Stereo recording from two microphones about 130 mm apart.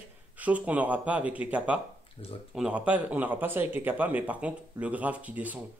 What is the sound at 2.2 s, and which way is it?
Speech, 45° left (ahead or behind).